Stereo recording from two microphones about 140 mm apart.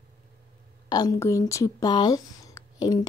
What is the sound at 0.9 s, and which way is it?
Speech, 25° left (ahead or behind).